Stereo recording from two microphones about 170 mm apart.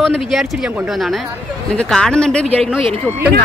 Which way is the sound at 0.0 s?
Centre (ahead or behind).